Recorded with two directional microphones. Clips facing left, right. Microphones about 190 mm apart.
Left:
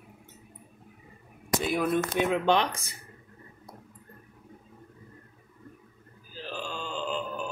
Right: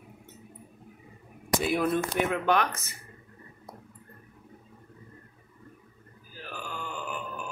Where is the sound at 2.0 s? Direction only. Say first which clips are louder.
Left 2 dB; 25° left (ahead or behind).